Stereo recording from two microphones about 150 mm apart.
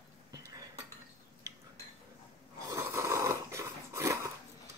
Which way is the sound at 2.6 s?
20° right (ahead or behind).